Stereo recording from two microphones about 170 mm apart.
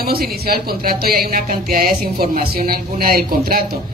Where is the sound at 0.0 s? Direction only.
65° right (ahead or behind).